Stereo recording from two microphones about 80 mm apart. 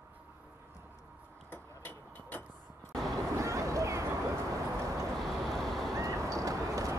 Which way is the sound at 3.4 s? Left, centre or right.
Right.